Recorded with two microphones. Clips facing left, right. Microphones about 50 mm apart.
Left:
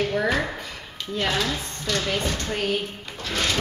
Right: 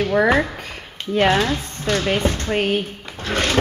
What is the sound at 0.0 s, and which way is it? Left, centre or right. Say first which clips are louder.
Speech: right 6 dB; right.